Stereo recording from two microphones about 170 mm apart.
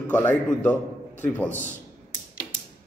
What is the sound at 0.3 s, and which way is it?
A man's voice, 10° left (ahead or behind).